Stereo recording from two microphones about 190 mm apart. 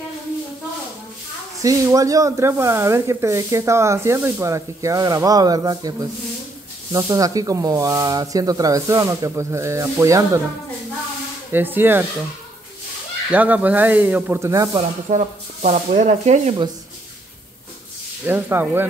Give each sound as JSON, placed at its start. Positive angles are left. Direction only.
{"t": 1.6, "sound": "speech", "side_deg": -15}
{"t": 11.5, "sound": "speech", "side_deg": -10}
{"t": 13.3, "sound": "speech", "side_deg": -10}
{"t": 14.8, "sound": "speech", "side_deg": -40}
{"t": 18.2, "sound": "speech", "side_deg": -10}